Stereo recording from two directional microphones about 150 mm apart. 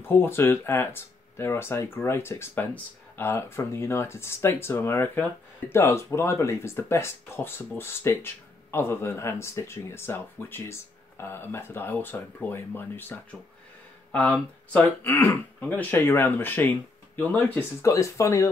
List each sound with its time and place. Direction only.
0.0 s speech: 15° left (ahead or behind)